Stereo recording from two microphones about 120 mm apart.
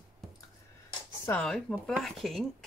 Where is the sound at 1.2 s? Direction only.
10° left (ahead or behind).